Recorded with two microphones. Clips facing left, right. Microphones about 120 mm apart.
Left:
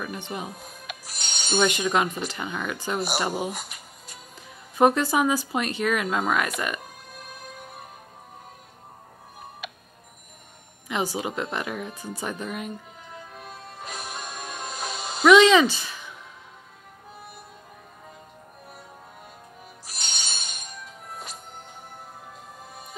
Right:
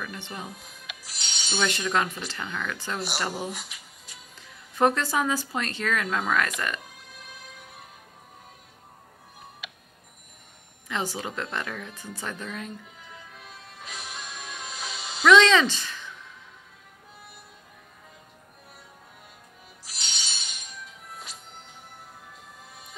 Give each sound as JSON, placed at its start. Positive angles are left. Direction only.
{"t": 0.0, "sound": "speech", "side_deg": 15}
{"t": 0.5, "sound": "music", "side_deg": 45}
{"t": 1.6, "sound": "speech", "side_deg": 15}
{"t": 3.5, "sound": "music", "side_deg": 50}
{"t": 4.7, "sound": "speech", "side_deg": 15}
{"t": 6.8, "sound": "music", "side_deg": 50}
{"t": 9.6, "sound": "a sound", "side_deg": 50}
{"t": 10.9, "sound": "speech", "side_deg": 15}
{"t": 13.1, "sound": "music", "side_deg": 45}
{"t": 15.2, "sound": "speech", "side_deg": 15}
{"t": 19.9, "sound": "music", "side_deg": 50}